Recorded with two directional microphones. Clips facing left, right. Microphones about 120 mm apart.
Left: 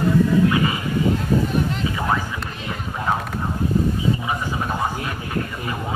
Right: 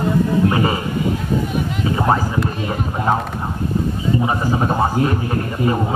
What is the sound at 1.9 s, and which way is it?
Speech, 35° right (ahead or behind).